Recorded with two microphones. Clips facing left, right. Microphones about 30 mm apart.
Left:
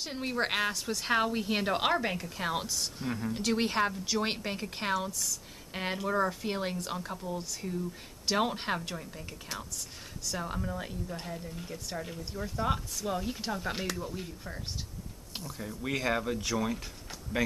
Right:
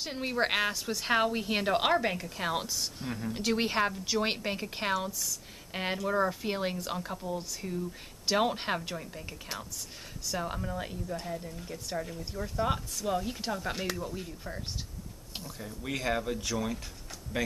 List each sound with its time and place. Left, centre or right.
0.0 s a woman's voice: centre
13.6 s speech: centre
13.8 s speech: centre
17.3 s speech: centre